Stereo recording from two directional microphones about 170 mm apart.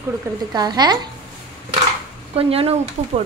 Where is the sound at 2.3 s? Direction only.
35° right (ahead or behind).